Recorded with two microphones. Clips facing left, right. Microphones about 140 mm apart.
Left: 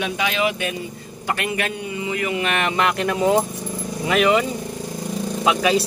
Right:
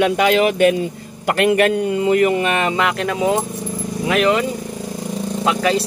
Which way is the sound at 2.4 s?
25° right (ahead or behind).